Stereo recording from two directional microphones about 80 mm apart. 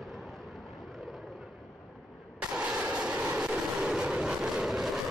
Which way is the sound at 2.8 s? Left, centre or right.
Centre.